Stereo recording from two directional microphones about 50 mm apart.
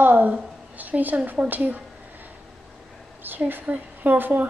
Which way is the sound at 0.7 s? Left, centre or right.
Right.